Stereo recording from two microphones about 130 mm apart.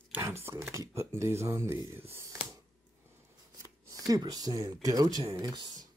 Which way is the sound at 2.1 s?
25° right (ahead or behind).